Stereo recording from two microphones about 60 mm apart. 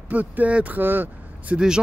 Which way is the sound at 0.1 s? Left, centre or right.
Right.